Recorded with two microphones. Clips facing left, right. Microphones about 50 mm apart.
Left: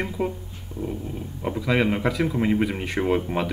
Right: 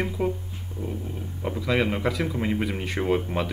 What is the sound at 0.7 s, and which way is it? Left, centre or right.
Dog, left.